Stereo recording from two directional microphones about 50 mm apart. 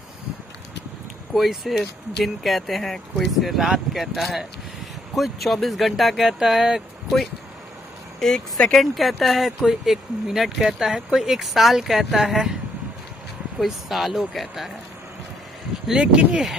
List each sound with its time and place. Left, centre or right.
1.3 s speech: centre
8.2 s speech: centre
13.6 s speech: centre
15.9 s speech: centre